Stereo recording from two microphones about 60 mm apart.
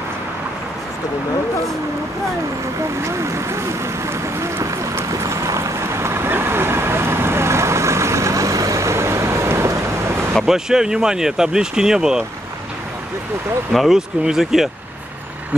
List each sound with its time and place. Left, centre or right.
3.0 s vehicle: right
10.4 s speech: centre
13.7 s speech: centre